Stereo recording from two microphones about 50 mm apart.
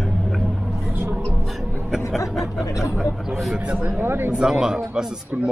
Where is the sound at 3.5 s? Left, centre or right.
Right.